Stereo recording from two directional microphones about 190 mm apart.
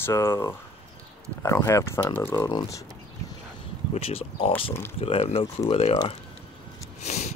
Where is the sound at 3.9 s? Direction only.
30° left (ahead or behind).